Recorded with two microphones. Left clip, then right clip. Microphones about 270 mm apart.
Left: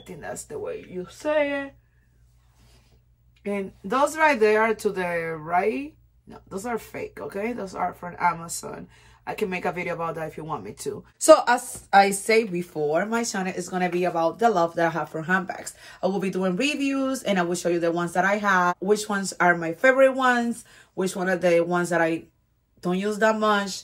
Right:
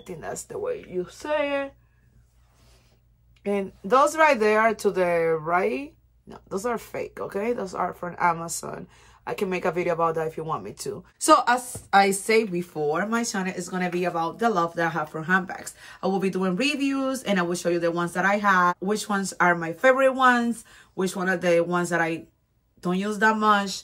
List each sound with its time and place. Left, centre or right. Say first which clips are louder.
0.0 s speech: right 1 dB; centre
3.4 s speech: right 3 dB; centre